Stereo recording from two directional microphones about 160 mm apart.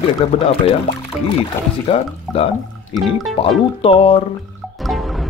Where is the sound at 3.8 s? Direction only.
35° left (ahead or behind).